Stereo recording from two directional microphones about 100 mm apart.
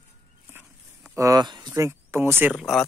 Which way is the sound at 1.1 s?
35° right (ahead or behind).